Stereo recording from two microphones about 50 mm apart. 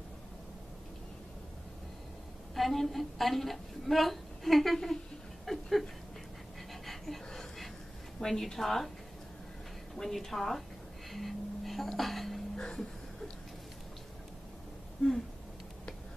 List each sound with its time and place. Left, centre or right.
2.5 s a woman's voice: centre
5.4 s a sound: centre
8.2 s a woman's voice: centre
9.9 s a woman's voice: centre
11.1 s music: centre
12.0 s a sound: centre
12.5 s music: centre